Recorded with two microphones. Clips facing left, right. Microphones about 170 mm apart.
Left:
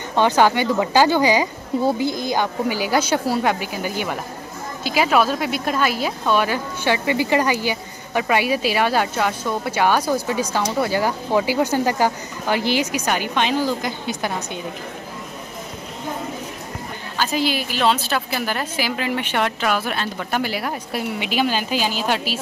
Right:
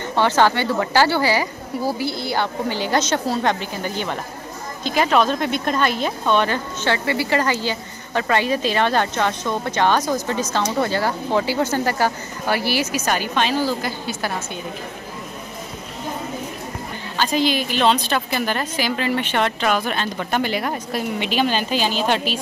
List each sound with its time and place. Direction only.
0.1 s speech: 15° left (ahead or behind)
17.2 s speech: 5° left (ahead or behind)